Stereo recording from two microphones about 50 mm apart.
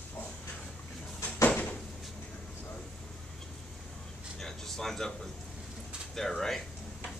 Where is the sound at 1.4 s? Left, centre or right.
Left.